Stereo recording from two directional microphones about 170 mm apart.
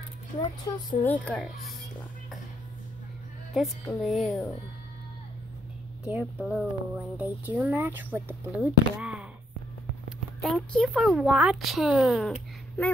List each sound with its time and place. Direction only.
0.4 s speech: 25° left (ahead or behind)
1.0 s speech: 10° left (ahead or behind)
3.5 s a woman's voice: 5° right (ahead or behind)
6.0 s speech: 5° right (ahead or behind)
10.4 s a woman's voice: 5° left (ahead or behind)